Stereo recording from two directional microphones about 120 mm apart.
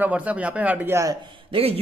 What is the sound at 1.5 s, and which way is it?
Speech, 55° right (ahead or behind).